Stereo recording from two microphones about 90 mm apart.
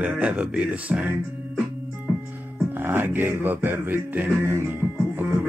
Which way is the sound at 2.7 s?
25° right (ahead or behind).